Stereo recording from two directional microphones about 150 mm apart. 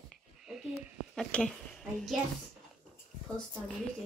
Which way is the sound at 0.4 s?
5° right (ahead or behind).